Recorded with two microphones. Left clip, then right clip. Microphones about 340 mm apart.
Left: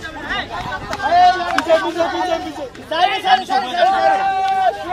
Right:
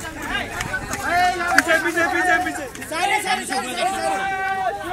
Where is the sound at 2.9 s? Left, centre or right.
Left.